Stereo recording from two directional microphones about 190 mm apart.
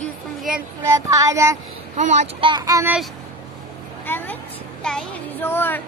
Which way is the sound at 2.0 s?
40° right (ahead or behind).